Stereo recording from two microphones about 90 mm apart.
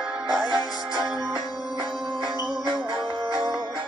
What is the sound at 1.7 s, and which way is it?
Music, 55° right (ahead or behind).